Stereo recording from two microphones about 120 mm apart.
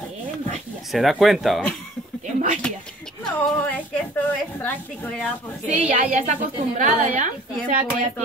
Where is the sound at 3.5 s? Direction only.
10° left (ahead or behind).